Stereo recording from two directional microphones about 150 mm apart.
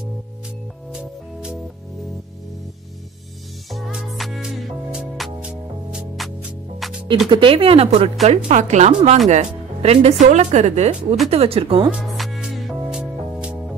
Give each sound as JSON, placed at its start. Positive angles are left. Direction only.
{"t": 0.9, "sound": "music", "side_deg": -5}
{"t": 3.7, "sound": "music", "side_deg": 0}
{"t": 7.2, "sound": "speech", "side_deg": -35}
{"t": 8.5, "sound": "speech", "side_deg": -50}
{"t": 11.9, "sound": "music", "side_deg": -5}